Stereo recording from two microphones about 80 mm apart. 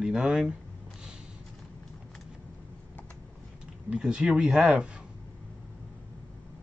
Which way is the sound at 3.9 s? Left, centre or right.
Centre.